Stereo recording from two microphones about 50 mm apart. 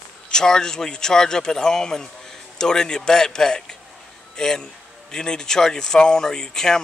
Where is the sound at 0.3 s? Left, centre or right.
Centre.